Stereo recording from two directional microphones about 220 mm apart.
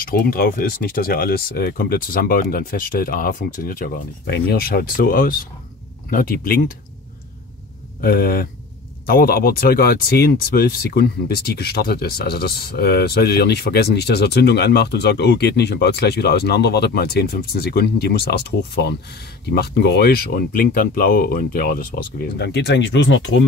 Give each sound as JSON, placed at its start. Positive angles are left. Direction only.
{"t": 0.0, "sound": "speech", "side_deg": 40}
{"t": 8.0, "sound": "speech", "side_deg": 45}